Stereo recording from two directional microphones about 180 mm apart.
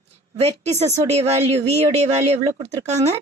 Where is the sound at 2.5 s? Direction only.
35° right (ahead or behind).